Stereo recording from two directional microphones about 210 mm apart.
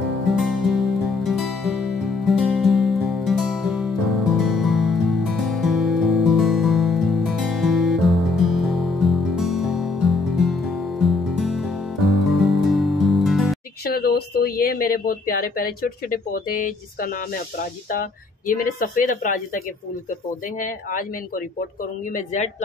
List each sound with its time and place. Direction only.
0.4 s music: centre (ahead or behind)
13.8 s speech: 45° left (ahead or behind)